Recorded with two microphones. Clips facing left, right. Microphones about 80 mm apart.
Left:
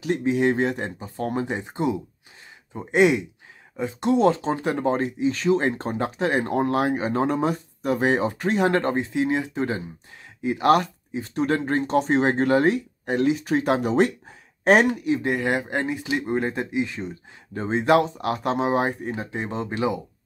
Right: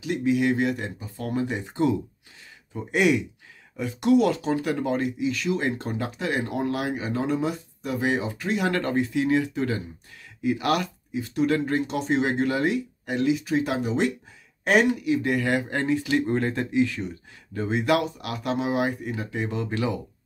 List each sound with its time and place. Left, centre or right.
0.0 s speech: left